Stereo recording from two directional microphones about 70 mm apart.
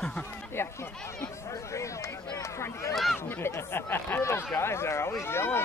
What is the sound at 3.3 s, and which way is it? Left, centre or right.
Speech, left.